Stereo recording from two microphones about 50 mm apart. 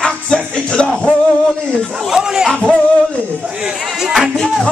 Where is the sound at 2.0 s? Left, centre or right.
Centre.